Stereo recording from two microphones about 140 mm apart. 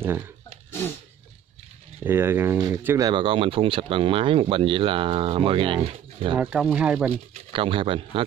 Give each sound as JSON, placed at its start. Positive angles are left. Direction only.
{"t": 0.0, "sound": "speech", "side_deg": -15}
{"t": 2.0, "sound": "speech", "side_deg": -15}
{"t": 3.1, "sound": "speech", "side_deg": -40}
{"t": 6.3, "sound": "speech", "side_deg": -5}
{"t": 7.3, "sound": "speech", "side_deg": -40}